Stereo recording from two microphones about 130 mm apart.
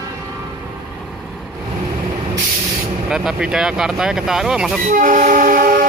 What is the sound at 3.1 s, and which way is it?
Speech, 5° right (ahead or behind).